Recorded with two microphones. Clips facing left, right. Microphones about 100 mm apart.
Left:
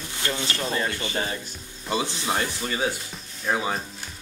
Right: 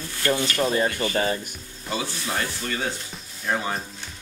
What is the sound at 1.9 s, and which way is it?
Speech, 20° left (ahead or behind).